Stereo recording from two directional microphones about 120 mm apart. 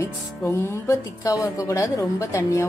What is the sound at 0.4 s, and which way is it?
A woman's voice, 20° left (ahead or behind).